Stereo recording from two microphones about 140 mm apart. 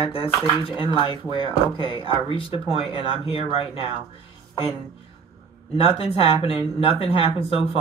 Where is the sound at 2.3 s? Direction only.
40° left (ahead or behind).